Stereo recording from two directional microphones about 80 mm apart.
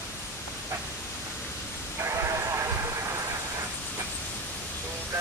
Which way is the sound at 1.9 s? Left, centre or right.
Right.